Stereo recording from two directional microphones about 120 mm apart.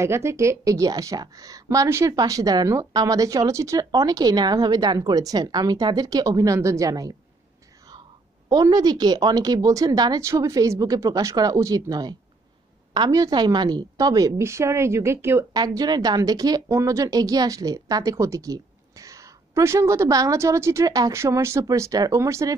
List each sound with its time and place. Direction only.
0.0 s a woman's voice: 25° right (ahead or behind)
8.5 s a woman's voice: 30° right (ahead or behind)
15.5 s a woman's voice: 35° right (ahead or behind)